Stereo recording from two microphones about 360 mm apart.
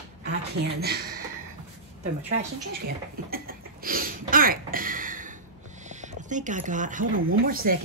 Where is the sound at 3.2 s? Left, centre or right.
Right.